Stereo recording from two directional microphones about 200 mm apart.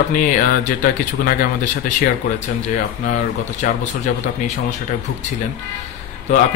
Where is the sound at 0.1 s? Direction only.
40° left (ahead or behind).